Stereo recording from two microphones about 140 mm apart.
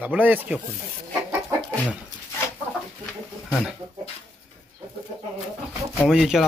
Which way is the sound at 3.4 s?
Centre (ahead or behind).